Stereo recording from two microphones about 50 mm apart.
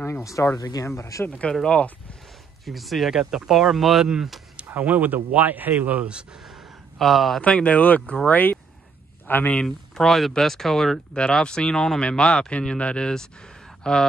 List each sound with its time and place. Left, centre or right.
0.2 s speech: left
2.6 s speech: centre
4.0 s speech: centre
4.6 s speech: right
7.0 s speech: centre
7.4 s speech: left
9.7 s speech: centre
11.1 s speech: centre